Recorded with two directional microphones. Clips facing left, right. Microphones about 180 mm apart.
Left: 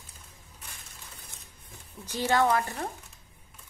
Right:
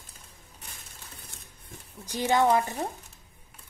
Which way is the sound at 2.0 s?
15° right (ahead or behind).